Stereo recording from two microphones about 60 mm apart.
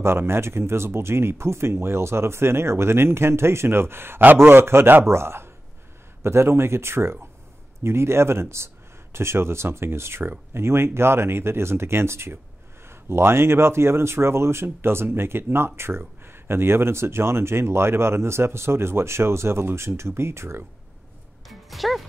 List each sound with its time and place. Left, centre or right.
0.0 s speech: right
21.5 s music: centre